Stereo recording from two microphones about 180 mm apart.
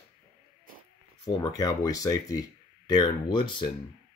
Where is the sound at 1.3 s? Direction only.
20° left (ahead or behind).